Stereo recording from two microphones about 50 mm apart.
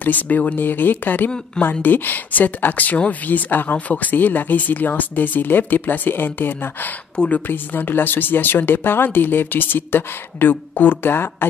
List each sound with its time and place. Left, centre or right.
0.0 s speech: left